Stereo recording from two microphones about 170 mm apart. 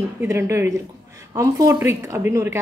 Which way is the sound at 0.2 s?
15° right (ahead or behind).